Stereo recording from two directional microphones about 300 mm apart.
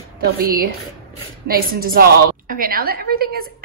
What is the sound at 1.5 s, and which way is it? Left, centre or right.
A woman's voice, right.